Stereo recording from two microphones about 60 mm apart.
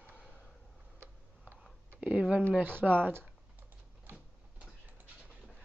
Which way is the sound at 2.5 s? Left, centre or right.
Right.